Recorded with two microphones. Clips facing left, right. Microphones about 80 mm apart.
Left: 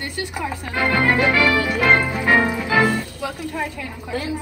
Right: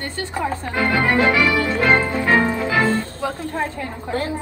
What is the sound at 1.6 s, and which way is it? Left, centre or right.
Music, centre.